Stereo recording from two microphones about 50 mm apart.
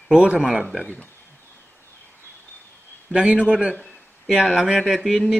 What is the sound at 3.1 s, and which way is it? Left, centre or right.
Speech, right.